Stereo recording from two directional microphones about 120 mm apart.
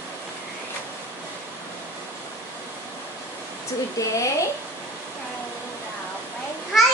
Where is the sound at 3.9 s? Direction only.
25° left (ahead or behind).